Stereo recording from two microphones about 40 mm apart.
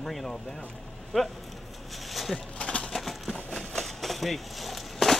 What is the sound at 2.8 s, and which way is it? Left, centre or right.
Pigeon, centre.